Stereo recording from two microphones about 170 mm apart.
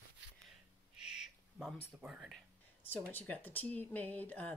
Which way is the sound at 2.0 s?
5° right (ahead or behind).